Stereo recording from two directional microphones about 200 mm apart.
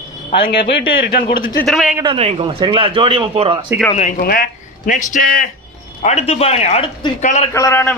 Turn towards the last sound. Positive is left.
turn(degrees=10)  # may be behind; listen again after turning